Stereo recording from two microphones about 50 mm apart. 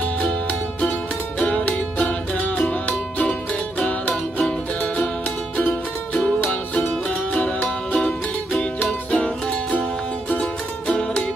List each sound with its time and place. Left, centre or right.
0.5 s music: left
5.6 s music: left
9.1 s music: left